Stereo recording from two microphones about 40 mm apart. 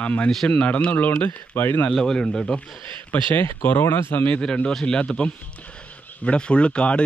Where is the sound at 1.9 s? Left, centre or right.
Centre.